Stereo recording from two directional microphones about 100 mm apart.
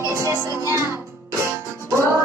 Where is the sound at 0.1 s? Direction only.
30° right (ahead or behind).